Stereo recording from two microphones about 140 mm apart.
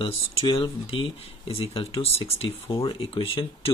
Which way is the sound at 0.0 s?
40° left (ahead or behind).